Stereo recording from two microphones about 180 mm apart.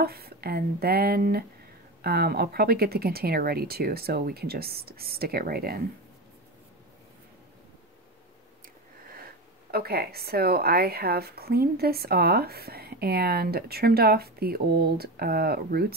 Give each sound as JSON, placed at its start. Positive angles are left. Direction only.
{"t": 0.0, "sound": "speech", "side_deg": -60}
{"t": 9.1, "sound": "speech", "side_deg": -55}